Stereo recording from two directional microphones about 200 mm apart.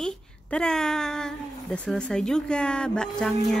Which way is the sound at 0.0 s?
5° left (ahead or behind).